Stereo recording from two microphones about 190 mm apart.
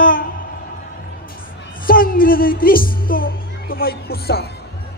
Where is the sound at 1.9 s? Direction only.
50° left (ahead or behind).